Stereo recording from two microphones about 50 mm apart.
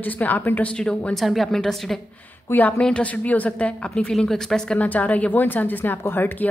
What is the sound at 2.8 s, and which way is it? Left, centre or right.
A woman's voice, left.